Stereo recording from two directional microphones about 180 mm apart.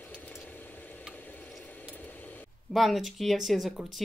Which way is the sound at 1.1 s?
10° left (ahead or behind).